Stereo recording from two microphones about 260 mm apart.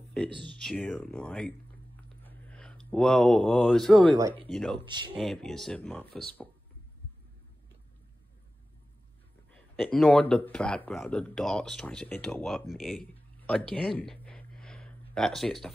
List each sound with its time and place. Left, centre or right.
0.4 s speech: centre
4.1 s speech: centre
4.5 s speech: centre
4.7 s speech: centre
5.1 s speech: centre
9.9 s speech: centre